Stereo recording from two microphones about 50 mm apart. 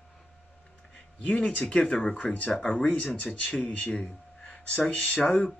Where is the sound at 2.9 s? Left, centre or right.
Left.